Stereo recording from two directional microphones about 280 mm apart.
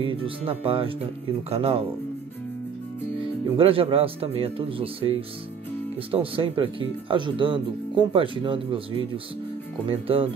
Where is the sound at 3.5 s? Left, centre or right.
Centre.